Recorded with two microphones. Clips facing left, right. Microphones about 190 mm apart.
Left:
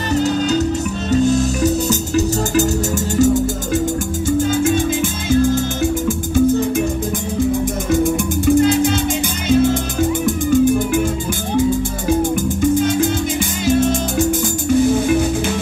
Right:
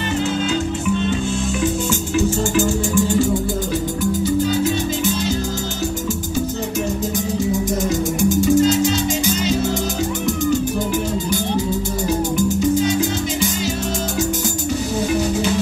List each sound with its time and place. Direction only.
0.1 s music: 40° left (ahead or behind)
4.4 s music: 50° left (ahead or behind)
7.9 s music: 55° left (ahead or behind)
12.1 s music: 55° left (ahead or behind)